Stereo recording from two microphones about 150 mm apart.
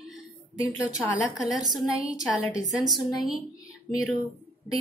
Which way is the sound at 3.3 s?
25° left (ahead or behind).